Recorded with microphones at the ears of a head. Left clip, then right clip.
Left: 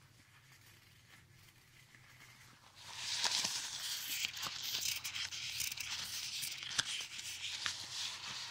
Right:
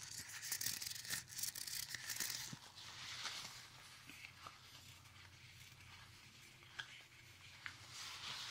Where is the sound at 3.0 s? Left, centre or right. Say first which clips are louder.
Left 13 dB; left.